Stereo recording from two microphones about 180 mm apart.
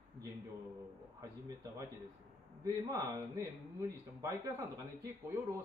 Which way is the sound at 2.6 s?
20° right (ahead or behind).